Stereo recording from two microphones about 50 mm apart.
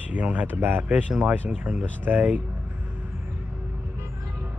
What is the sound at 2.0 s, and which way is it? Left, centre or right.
Speech, right.